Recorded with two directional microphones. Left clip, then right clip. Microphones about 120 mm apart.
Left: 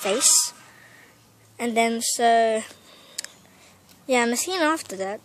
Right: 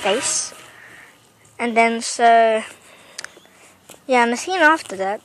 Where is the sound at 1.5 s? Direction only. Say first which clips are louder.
Right 6 dB; 20° left (ahead or behind).